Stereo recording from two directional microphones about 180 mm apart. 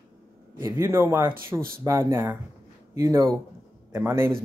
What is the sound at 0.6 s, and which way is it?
A man's voice, 15° right (ahead or behind).